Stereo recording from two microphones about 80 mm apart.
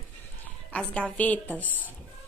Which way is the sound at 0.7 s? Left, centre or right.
Centre.